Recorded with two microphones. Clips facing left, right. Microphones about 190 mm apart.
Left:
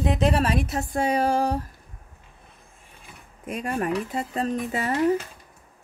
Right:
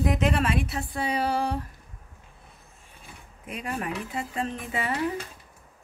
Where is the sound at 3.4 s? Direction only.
45° left (ahead or behind).